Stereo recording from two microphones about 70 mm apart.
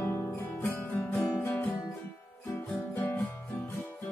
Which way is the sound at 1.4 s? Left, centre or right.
Left.